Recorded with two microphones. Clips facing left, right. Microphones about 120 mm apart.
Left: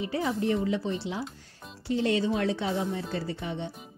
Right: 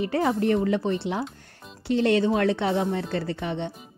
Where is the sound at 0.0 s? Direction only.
60° right (ahead or behind).